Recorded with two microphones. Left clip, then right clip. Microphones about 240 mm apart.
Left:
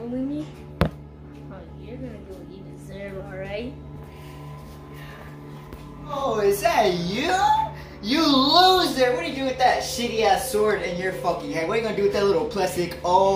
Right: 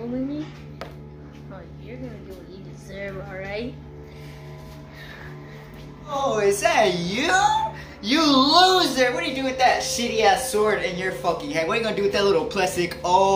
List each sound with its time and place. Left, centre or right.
0.8 s music: left
2.9 s music: centre
6.2 s a sound: centre
8.0 s speech: centre